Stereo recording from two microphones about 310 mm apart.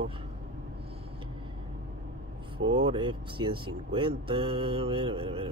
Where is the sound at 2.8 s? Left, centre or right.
Centre.